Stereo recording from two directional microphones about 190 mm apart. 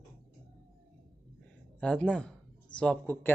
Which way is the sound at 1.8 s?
5° left (ahead or behind).